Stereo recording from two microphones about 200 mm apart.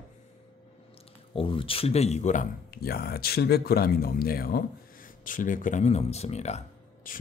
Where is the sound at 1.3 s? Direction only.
25° left (ahead or behind).